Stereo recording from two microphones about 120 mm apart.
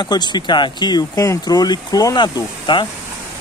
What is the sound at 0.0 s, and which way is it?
Speech, 40° left (ahead or behind).